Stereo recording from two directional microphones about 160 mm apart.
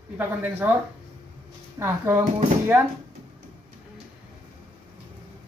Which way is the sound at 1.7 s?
15° right (ahead or behind).